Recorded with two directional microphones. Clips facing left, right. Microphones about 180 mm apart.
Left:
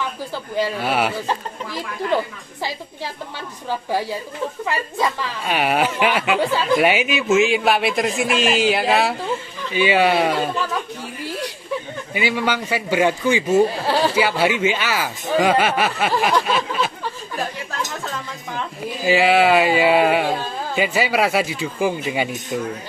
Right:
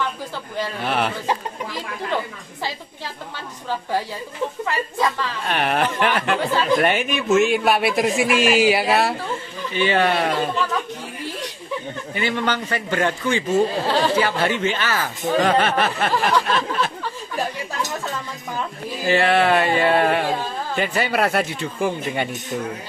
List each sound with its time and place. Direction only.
0.6 s a man's voice: 10° left (ahead or behind)
1.2 s speech: 15° right (ahead or behind)
4.6 s a man's voice: 10° left (ahead or behind)
9.8 s a man's voice: 10° left (ahead or behind)
12.1 s a man's voice: 10° left (ahead or behind)
18.8 s a man's voice: 5° left (ahead or behind)